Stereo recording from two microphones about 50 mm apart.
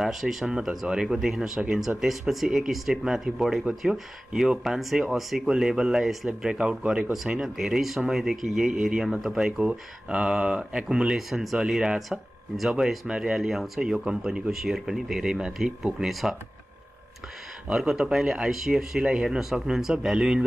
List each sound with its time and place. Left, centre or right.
0.0 s speech: centre
9.7 s speech: centre
17.7 s speech: centre